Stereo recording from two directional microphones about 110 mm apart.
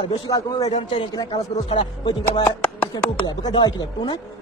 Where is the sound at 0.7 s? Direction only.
60° left (ahead or behind).